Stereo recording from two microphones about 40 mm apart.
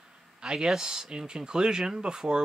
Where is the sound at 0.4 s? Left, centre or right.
Right.